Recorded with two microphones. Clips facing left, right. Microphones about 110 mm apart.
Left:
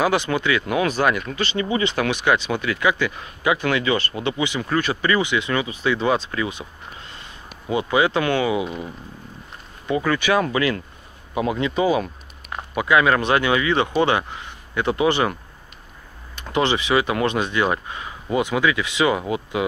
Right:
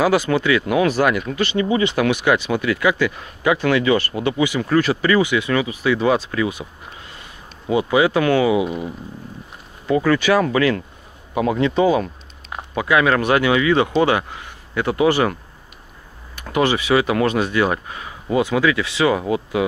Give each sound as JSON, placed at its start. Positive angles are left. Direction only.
{"t": 0.0, "sound": "speech", "side_deg": 20}
{"t": 7.6, "sound": "speech", "side_deg": -20}
{"t": 8.0, "sound": "speech", "side_deg": 25}
{"t": 8.4, "sound": "speech", "side_deg": -25}
{"t": 8.6, "sound": "speech", "side_deg": -10}
{"t": 10.0, "sound": "speech", "side_deg": 20}
{"t": 12.7, "sound": "speech", "side_deg": 25}
{"t": 16.4, "sound": "speech", "side_deg": 20}